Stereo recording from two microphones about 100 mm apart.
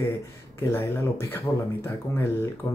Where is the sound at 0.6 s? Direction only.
25° left (ahead or behind).